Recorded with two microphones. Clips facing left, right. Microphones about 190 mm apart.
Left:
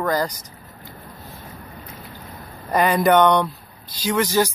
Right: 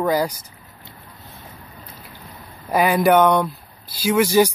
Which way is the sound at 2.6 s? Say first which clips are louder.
Right 1 dB; 5° right (ahead or behind).